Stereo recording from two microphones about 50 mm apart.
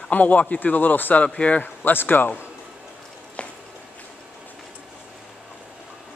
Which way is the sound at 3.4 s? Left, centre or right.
Left.